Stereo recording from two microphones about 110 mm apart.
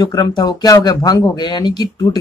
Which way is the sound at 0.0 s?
40° left (ahead or behind).